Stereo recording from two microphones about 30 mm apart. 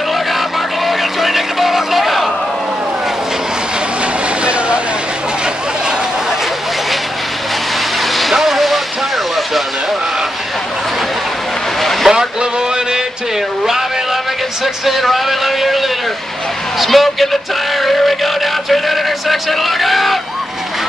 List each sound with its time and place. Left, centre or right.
0.8 s a sound: centre
8.1 s vehicle: centre
11.8 s vehicle: centre
12.1 s vehicle: right
14.6 s speech: centre
16.8 s speech: centre
17.8 s music: centre